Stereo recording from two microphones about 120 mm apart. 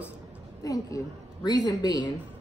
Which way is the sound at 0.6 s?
30° left (ahead or behind).